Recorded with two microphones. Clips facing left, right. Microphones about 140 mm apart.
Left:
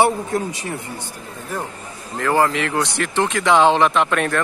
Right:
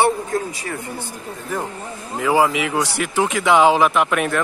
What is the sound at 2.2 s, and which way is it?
Speech, 10° right (ahead or behind).